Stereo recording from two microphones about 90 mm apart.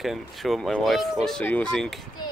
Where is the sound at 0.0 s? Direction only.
Centre (ahead or behind).